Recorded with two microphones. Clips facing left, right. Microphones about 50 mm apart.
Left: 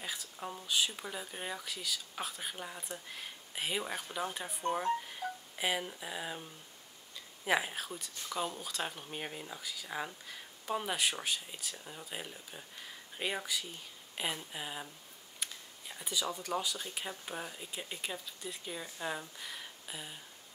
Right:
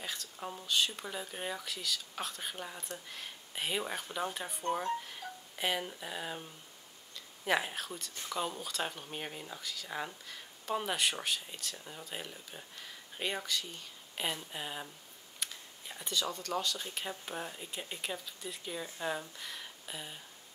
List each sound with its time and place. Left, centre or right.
0.0 s speech: centre
15.4 s a sound: centre
17.0 s speech: centre